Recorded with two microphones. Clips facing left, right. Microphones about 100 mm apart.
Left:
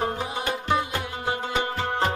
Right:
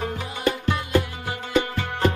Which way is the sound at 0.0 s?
25° left (ahead or behind).